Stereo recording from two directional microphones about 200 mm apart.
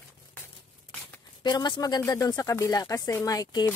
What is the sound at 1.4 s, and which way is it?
Speech, 20° left (ahead or behind).